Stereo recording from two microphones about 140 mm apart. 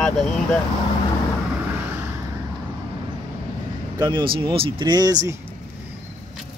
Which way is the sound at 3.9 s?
30° right (ahead or behind).